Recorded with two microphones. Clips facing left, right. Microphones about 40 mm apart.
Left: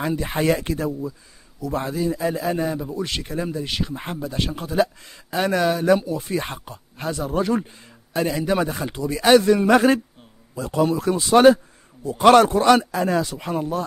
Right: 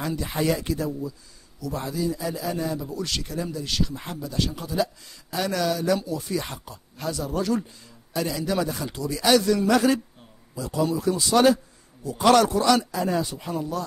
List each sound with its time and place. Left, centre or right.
0.0 s a man's voice: left
13.0 s speech: left
13.5 s a man's voice: left